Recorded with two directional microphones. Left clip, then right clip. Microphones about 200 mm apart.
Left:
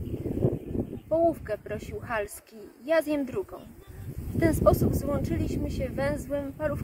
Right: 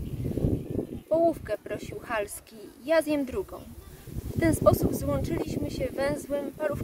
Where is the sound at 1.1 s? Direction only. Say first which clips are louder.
Even; 10° right (ahead or behind).